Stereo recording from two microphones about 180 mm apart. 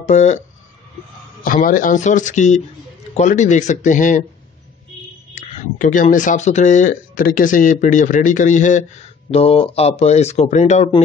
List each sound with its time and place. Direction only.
0.0 s speech: 40° left (ahead or behind)
1.4 s speech: 50° left (ahead or behind)
5.3 s speech: 45° left (ahead or behind)